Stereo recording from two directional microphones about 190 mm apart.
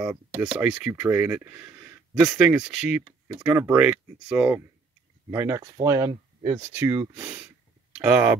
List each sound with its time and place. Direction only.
0.0 s speech: 5° right (ahead or behind); by 6.7 s 20° right (ahead or behind)
6.7 s speech: 10° right (ahead or behind)